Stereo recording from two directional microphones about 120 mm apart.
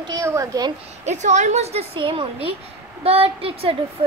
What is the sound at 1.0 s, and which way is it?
A child's voice, 75° right (ahead or behind).